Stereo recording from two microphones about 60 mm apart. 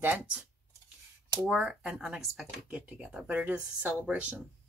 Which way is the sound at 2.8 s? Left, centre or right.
Right.